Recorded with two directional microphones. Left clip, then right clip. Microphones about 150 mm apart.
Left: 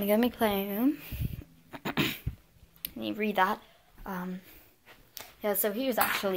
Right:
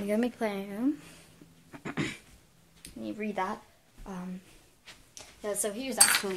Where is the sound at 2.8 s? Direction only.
20° left (ahead or behind).